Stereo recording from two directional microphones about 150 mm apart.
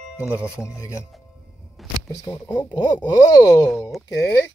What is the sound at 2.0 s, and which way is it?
Speech, 25° left (ahead or behind).